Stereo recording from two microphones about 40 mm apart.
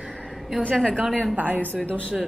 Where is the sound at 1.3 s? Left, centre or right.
Right.